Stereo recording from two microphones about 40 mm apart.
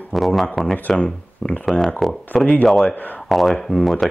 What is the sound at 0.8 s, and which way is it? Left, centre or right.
Speech, left.